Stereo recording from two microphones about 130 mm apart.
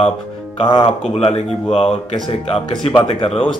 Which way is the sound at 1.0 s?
50° left (ahead or behind).